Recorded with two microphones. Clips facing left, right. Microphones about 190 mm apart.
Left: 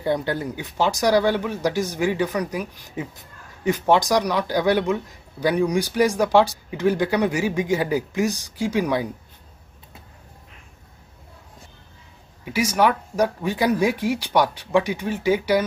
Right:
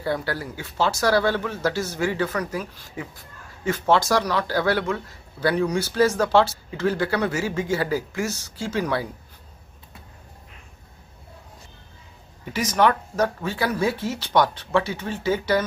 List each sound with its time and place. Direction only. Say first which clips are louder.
0.0 s speech: left 3 dB; 20° left (ahead or behind)
12.4 s speech: left 1 dB; 10° left (ahead or behind)